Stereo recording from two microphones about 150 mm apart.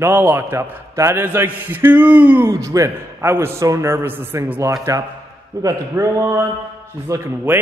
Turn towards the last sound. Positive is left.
turn(degrees=-15)  # may be behind; listen again after turning